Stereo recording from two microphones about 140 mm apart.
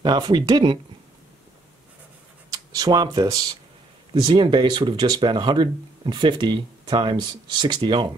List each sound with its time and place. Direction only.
0.0 s speech: 30° right (ahead or behind)
2.5 s speech: 25° right (ahead or behind)